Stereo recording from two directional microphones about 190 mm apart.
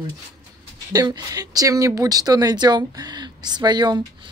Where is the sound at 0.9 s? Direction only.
20° right (ahead or behind).